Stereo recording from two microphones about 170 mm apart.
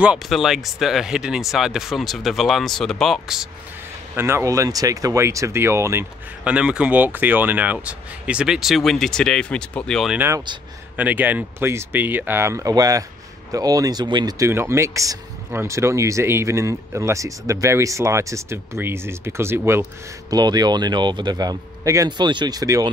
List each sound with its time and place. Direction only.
0.0 s speech: 5° right (ahead or behind)
4.1 s speech: 15° right (ahead or behind); by 10.1 s 5° left (ahead or behind)
10.1 s speech: 15° right (ahead or behind)